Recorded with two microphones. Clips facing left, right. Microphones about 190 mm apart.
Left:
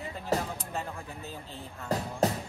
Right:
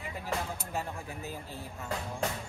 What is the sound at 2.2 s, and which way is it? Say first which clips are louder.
Music: left 7 dB; 40° left (ahead or behind).